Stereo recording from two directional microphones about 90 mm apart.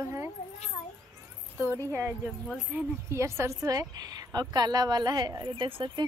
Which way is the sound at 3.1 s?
30° right (ahead or behind).